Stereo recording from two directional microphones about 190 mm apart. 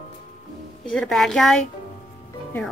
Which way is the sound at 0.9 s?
Centre (ahead or behind).